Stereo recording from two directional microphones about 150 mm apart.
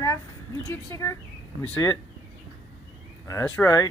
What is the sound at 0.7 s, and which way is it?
Speech, 20° left (ahead or behind).